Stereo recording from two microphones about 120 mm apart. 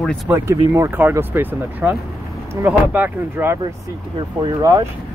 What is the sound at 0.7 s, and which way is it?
Speech, 20° right (ahead or behind).